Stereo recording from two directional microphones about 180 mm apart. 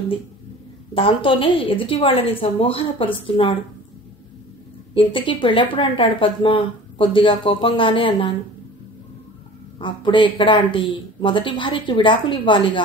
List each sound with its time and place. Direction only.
0.9 s a woman's voice: 30° left (ahead or behind)
4.9 s speech: 30° left (ahead or behind)
9.8 s speech: 25° left (ahead or behind)